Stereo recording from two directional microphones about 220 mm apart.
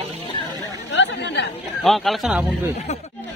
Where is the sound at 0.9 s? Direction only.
55° left (ahead or behind).